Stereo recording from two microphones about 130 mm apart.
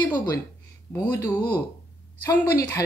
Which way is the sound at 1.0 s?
20° left (ahead or behind).